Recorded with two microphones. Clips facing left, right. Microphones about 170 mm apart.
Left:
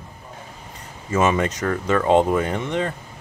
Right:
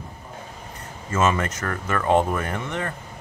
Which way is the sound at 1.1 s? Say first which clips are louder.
Left 3 dB; 15° left (ahead or behind).